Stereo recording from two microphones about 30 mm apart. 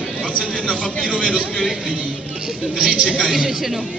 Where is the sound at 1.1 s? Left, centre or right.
Right.